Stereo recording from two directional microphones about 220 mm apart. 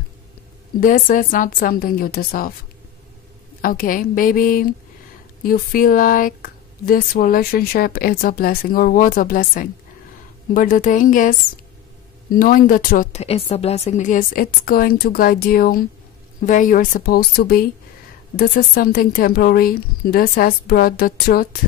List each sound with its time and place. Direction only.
0.7 s speech: 40° left (ahead or behind)
3.6 s speech: 40° left (ahead or behind)